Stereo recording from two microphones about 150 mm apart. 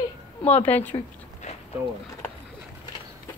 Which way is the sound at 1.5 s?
45° left (ahead or behind).